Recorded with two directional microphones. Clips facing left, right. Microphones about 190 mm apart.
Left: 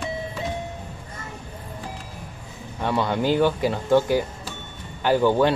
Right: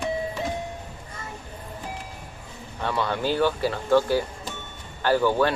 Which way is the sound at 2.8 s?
15° left (ahead or behind).